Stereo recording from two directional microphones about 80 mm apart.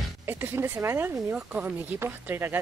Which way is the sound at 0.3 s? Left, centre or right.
Right.